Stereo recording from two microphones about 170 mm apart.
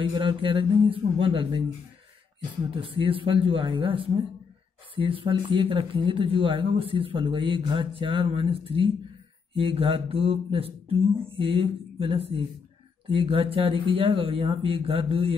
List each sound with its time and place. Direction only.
0.1 s speech: 30° right (ahead or behind)
2.7 s speech: 30° right (ahead or behind)